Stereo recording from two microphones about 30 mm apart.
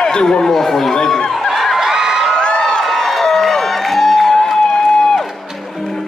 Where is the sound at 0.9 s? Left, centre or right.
Centre.